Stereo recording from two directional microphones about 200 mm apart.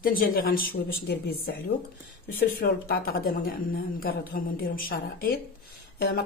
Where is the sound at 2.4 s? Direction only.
50° left (ahead or behind).